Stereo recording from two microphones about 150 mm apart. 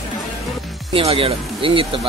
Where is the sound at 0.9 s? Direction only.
35° right (ahead or behind).